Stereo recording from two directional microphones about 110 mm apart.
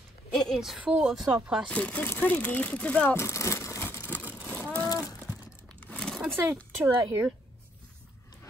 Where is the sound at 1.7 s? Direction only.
10° left (ahead or behind).